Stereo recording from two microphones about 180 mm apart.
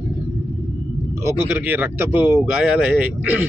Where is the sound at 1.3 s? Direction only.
10° right (ahead or behind).